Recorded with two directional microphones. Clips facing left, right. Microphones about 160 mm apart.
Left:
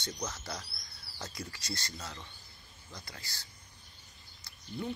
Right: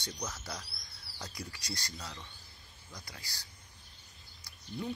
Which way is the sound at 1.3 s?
15° right (ahead or behind).